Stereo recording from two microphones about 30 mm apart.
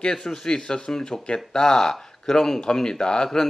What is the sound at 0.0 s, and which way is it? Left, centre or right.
Speech, left.